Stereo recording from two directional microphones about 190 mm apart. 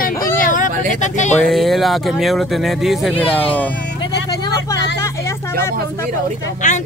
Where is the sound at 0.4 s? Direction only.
45° left (ahead or behind).